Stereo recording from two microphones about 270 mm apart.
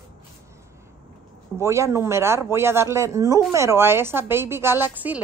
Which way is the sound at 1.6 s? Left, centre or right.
Centre.